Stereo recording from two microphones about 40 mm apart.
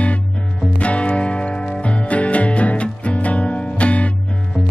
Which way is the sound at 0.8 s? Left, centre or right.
Left.